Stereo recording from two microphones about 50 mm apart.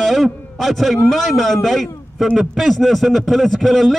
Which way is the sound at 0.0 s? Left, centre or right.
Centre.